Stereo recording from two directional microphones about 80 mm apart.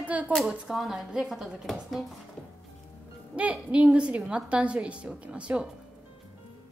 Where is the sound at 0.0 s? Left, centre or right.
Centre.